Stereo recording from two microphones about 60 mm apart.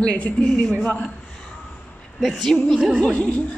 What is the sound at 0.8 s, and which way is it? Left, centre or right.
Speech, left.